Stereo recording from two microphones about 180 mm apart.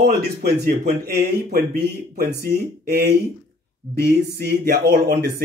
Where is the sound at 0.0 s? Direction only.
55° right (ahead or behind).